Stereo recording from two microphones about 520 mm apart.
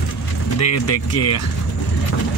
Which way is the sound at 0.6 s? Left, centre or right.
Left.